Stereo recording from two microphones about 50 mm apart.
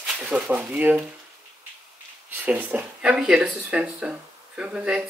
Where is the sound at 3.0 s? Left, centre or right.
Centre.